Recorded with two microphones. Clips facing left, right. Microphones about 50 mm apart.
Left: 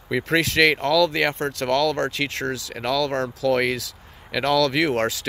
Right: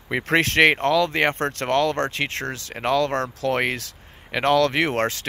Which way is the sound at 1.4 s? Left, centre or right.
Right.